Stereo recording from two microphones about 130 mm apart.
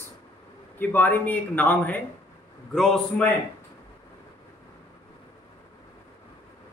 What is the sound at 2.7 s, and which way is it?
Speech, centre (ahead or behind).